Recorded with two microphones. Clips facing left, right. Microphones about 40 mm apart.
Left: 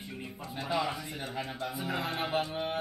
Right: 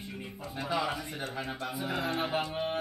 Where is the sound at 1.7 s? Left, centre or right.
Centre.